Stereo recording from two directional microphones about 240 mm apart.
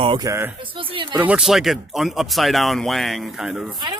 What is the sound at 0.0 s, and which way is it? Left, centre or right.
Speech, centre.